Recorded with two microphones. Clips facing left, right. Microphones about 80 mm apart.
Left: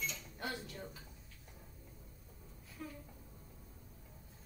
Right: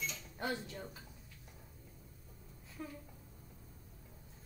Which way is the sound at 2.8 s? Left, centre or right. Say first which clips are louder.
Right 1 dB; right.